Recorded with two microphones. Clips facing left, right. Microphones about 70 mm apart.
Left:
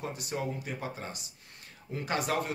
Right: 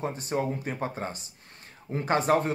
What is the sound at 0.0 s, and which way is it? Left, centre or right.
A man's voice, right.